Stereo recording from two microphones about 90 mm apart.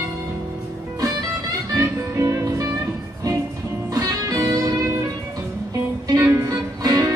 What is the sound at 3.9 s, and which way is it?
Music, 40° right (ahead or behind).